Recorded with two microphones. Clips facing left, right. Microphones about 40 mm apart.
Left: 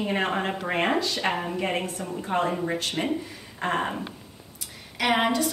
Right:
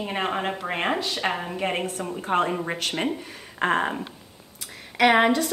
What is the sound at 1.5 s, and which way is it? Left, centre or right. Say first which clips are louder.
Speech: even; right.